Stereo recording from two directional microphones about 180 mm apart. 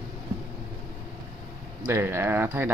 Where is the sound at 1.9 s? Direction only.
15° right (ahead or behind).